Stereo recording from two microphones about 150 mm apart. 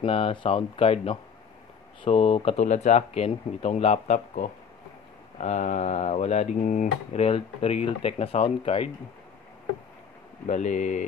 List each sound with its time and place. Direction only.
0.0 s speech: 35° left (ahead or behind)
10.4 s speech: 50° left (ahead or behind)